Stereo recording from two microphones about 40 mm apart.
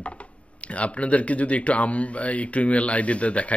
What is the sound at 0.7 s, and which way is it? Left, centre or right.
A man's voice, left.